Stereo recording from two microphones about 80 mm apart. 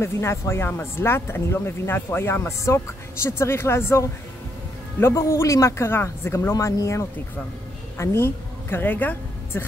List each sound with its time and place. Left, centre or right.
0.0 s speech: left
5.0 s a woman's voice: left